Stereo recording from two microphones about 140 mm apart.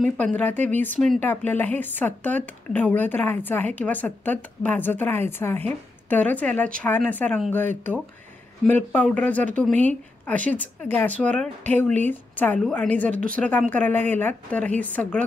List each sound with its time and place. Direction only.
0.0 s speech: 10° left (ahead or behind)